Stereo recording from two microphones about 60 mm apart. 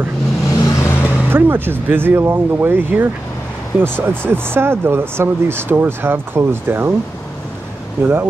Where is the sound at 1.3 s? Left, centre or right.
Right.